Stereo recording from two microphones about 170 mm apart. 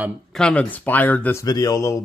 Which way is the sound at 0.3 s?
5° left (ahead or behind).